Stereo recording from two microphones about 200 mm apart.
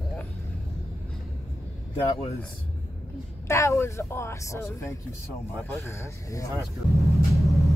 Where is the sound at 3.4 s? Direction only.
15° left (ahead or behind).